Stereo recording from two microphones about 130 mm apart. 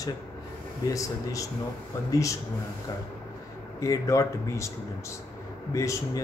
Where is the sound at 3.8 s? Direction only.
25° left (ahead or behind).